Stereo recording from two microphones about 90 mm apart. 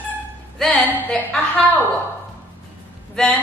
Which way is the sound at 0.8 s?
20° left (ahead or behind).